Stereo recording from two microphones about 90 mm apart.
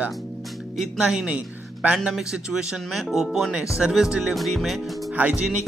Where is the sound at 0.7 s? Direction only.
5° right (ahead or behind).